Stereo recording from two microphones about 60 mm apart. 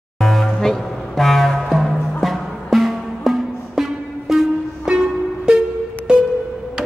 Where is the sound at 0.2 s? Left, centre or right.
Centre.